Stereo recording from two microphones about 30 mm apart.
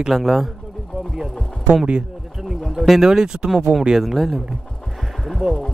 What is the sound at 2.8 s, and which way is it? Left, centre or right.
Speech, centre.